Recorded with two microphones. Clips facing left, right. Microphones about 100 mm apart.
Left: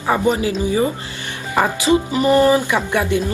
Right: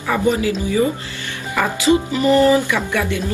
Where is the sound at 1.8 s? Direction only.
20° left (ahead or behind).